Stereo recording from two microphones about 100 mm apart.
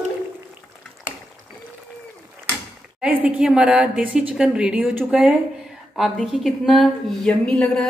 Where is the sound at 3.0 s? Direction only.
15° right (ahead or behind).